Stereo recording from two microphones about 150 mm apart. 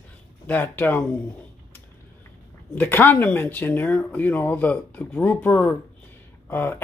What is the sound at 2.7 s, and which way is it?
Speech, 15° left (ahead or behind).